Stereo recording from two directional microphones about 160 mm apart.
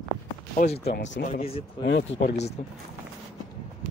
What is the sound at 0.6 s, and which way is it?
Speech, 60° left (ahead or behind).